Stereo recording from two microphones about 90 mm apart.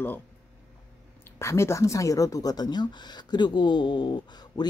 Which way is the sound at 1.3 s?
30° left (ahead or behind).